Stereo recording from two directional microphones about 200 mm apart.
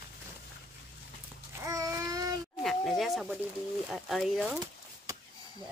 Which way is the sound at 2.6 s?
Centre (ahead or behind).